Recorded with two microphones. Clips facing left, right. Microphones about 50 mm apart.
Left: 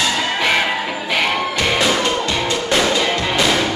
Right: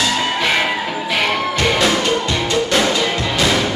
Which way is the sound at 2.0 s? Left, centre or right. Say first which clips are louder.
Right 1 dB; left.